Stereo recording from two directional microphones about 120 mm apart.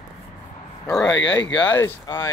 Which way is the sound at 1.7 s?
20° left (ahead or behind).